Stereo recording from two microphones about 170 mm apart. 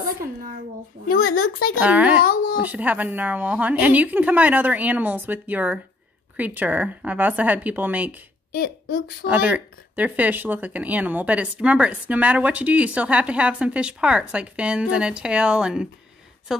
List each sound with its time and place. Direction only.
1.0 s a child's voice: 60° left (ahead or behind)
1.8 s speech: 10° right (ahead or behind)
8.5 s a woman's voice: 60° left (ahead or behind)
9.3 s speech: 10° right (ahead or behind)